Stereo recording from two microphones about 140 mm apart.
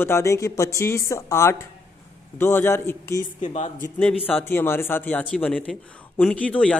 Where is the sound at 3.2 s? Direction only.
60° left (ahead or behind).